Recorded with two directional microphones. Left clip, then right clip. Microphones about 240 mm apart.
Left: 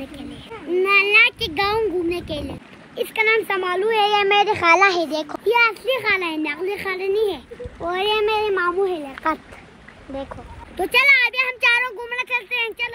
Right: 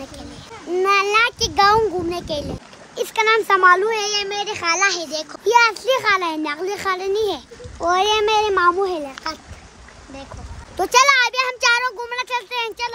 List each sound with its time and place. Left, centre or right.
0.7 s a sound: centre
1.6 s a child's voice: centre
4.4 s a child's voice: left
5.4 s a child's voice: centre
10.8 s a child's voice: centre